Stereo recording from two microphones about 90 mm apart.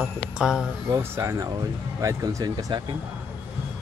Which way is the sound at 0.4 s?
5° right (ahead or behind).